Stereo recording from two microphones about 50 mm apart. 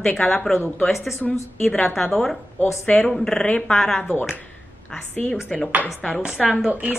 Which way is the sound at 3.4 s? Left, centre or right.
Left.